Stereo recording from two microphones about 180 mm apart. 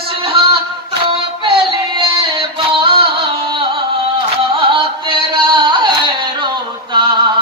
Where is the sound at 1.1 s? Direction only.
30° right (ahead or behind).